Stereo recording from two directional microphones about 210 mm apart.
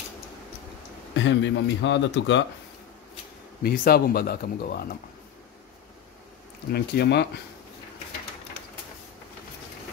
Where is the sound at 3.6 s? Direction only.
45° left (ahead or behind).